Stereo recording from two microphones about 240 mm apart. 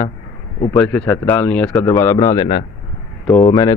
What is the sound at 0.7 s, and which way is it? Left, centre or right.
Speech, centre.